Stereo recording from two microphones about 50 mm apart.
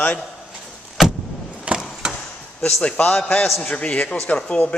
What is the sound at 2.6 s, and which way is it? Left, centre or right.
A man's voice, left.